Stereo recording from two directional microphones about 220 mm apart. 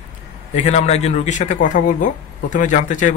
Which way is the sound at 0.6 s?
30° left (ahead or behind).